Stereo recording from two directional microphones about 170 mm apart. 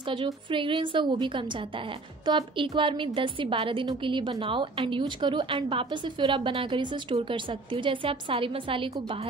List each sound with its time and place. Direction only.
0.1 s a woman's voice: 30° right (ahead or behind)